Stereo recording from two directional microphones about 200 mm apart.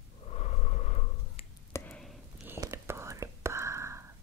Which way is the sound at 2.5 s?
15° right (ahead or behind).